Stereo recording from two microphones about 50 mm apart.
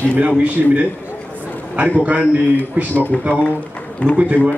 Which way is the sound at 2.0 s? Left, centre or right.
Right.